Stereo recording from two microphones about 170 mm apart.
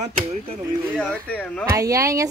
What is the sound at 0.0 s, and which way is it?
Speech, 40° right (ahead or behind).